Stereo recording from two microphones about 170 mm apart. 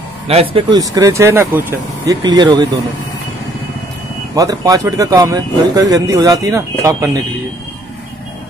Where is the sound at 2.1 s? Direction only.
25° right (ahead or behind).